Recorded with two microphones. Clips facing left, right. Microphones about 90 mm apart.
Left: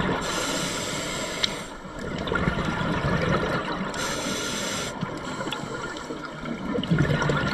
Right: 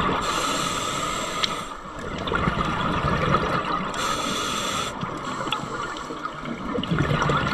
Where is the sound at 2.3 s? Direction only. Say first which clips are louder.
Right 3 dB; 60° right (ahead or behind).